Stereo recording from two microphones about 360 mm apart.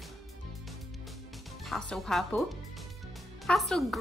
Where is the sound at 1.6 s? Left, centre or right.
Centre.